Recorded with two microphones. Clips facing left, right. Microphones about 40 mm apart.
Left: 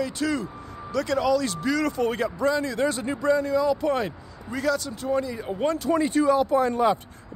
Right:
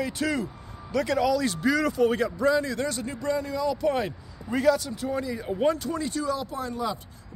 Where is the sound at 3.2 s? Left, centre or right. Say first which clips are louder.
Left 6 dB; centre.